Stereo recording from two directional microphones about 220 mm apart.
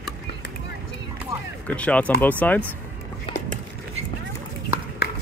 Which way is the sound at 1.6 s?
5° left (ahead or behind).